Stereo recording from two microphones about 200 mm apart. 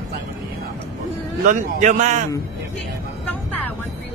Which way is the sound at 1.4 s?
40° right (ahead or behind).